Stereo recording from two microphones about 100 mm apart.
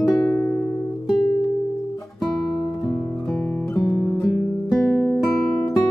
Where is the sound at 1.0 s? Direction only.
Centre (ahead or behind).